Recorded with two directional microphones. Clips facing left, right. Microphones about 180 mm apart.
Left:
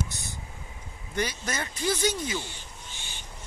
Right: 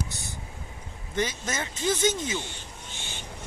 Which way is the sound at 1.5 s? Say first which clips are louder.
Right 1 dB; 25° right (ahead or behind).